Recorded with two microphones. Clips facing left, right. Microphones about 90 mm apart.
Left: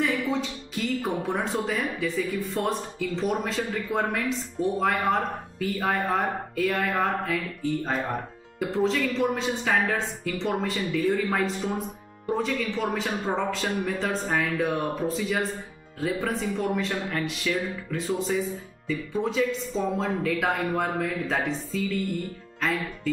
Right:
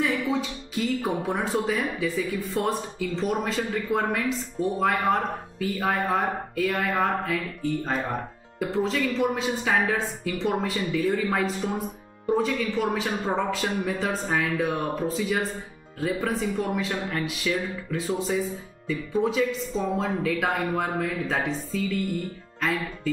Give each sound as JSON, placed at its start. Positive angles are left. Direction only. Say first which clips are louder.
{"t": 0.0, "sound": "speech", "louder": "right 1 dB", "side_deg": -5}